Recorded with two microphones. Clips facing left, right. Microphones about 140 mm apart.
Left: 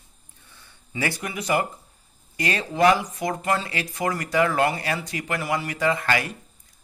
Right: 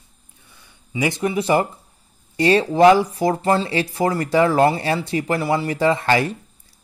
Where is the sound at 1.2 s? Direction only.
30° right (ahead or behind).